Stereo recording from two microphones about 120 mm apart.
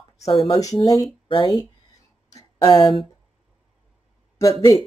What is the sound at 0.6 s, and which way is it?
Speech, 30° left (ahead or behind).